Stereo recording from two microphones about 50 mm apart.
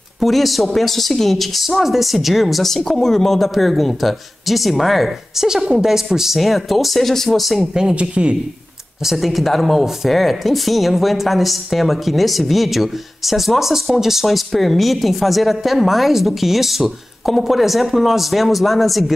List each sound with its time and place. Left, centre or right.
0.2 s speech: centre
7.9 s speech: right
9.0 s speech: centre